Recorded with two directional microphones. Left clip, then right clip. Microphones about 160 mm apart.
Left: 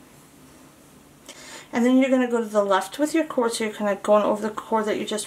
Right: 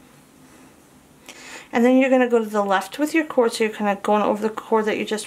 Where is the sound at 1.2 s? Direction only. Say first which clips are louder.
Right 3 dB; 20° right (ahead or behind).